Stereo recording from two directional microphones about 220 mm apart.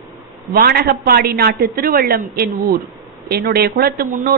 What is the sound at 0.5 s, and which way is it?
A man's voice, 45° right (ahead or behind).